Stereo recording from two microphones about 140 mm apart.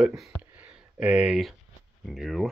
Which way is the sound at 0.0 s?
Centre (ahead or behind).